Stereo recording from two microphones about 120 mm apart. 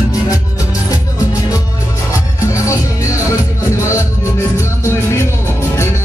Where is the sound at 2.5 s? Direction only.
25° left (ahead or behind).